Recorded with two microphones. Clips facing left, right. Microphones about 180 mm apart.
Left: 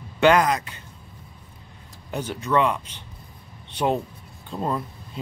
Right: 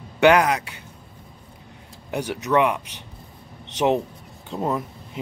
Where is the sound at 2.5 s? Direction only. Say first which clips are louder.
Right 2 dB; 10° right (ahead or behind).